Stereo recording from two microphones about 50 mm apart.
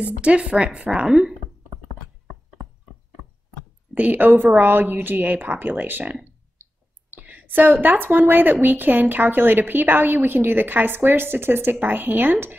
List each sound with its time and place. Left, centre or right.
0.0 s a woman's voice: right
3.9 s a woman's voice: right